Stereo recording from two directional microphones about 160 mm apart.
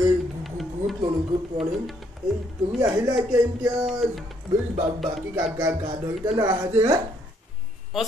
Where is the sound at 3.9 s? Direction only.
Centre (ahead or behind).